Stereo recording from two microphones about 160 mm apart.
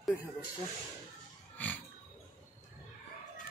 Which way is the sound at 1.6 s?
10° left (ahead or behind).